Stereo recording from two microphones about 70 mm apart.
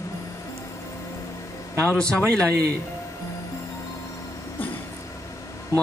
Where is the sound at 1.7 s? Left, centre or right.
Centre.